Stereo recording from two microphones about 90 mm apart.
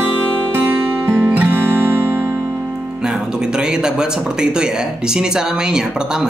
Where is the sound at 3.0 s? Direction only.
10° right (ahead or behind).